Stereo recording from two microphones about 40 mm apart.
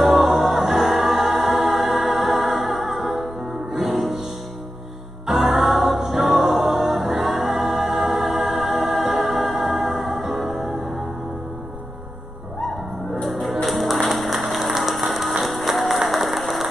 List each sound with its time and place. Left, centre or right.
0.0 s music: centre
5.2 s music: centre
13.1 s music: centre